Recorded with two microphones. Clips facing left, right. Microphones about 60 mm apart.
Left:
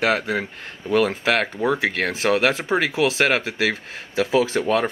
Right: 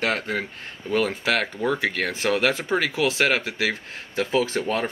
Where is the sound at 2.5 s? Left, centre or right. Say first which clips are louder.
Left 3 dB; centre.